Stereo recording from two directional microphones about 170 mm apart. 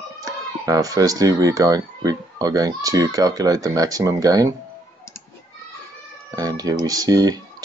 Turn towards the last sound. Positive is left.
turn(degrees=-20)  # may be behind; listen again after turning